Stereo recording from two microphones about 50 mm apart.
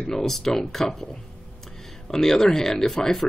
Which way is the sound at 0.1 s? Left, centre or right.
Centre.